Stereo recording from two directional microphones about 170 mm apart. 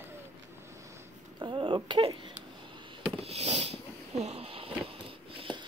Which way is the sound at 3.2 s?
35° right (ahead or behind).